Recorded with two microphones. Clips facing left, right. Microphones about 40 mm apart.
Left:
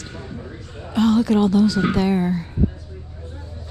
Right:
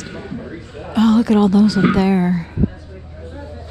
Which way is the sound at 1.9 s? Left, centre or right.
Right.